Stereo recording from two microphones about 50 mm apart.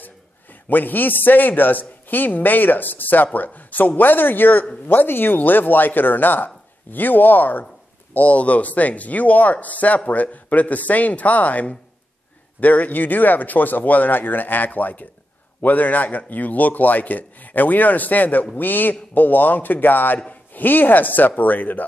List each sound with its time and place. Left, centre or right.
0.0 s a man's voice: left